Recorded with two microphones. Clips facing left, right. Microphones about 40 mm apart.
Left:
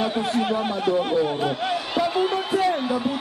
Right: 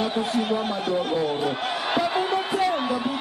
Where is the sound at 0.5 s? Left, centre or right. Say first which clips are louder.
Left 2 dB; centre.